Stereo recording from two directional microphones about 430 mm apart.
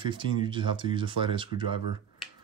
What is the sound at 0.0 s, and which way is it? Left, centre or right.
Speech, centre.